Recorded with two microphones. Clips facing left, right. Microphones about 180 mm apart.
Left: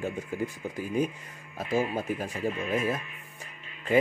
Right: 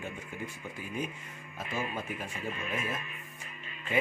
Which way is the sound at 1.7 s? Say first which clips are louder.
Left 8 dB; 40° left (ahead or behind).